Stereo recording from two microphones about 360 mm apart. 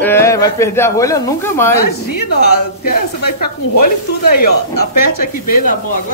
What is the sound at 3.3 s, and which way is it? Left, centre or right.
Speech, left.